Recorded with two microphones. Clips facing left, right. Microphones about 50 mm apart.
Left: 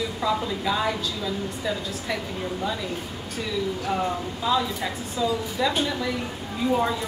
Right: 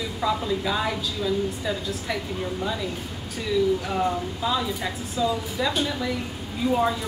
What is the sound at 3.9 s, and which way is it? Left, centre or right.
A woman's voice, centre.